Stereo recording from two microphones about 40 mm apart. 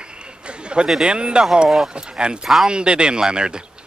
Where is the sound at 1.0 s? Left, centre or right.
Right.